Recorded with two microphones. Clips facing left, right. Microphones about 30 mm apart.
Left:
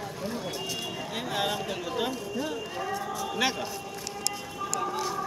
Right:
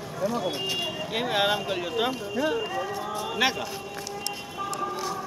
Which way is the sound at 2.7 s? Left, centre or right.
Centre.